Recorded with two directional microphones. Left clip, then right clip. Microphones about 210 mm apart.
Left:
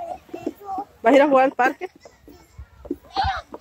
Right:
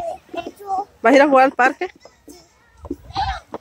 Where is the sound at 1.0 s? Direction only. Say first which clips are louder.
Right 3 dB; 20° right (ahead or behind).